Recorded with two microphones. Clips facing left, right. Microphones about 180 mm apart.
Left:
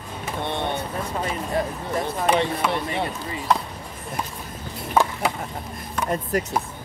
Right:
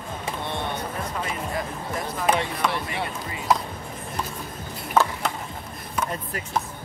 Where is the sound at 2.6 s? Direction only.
5° left (ahead or behind).